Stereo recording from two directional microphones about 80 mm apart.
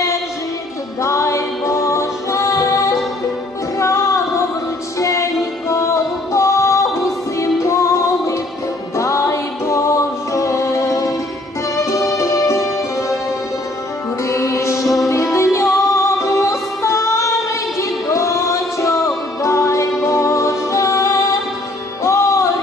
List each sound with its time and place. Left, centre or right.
1.0 s music: left
8.9 s music: left
14.2 s music: left
14.8 s music: centre
15.3 s music: left